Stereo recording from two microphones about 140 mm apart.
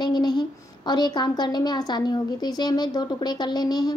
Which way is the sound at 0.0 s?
30° left (ahead or behind).